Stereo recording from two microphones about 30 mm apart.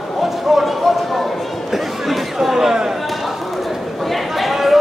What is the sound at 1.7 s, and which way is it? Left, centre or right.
Chatter, centre.